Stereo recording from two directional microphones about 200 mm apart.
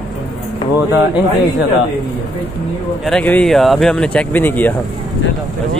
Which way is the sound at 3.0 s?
5° left (ahead or behind).